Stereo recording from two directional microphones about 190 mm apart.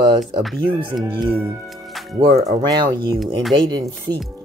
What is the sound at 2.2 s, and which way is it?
Speech, 35° right (ahead or behind).